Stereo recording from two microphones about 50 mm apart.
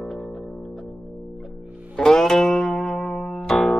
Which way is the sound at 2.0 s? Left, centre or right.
Centre.